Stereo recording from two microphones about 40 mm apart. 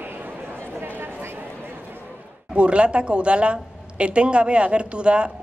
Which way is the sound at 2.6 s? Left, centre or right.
Right.